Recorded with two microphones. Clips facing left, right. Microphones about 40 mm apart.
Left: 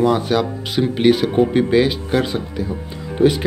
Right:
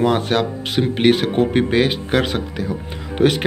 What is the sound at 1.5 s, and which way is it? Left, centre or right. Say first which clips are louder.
Speech: left 1 dB; right.